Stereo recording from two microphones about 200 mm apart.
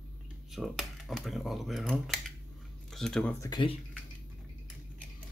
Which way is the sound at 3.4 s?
20° left (ahead or behind).